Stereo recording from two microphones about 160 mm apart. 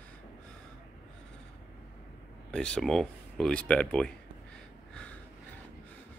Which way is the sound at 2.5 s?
5° left (ahead or behind).